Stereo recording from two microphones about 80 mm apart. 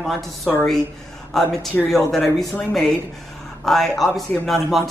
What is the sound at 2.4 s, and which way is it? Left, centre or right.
Speech, centre.